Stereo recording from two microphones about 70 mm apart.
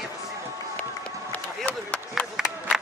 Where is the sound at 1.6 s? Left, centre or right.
Centre.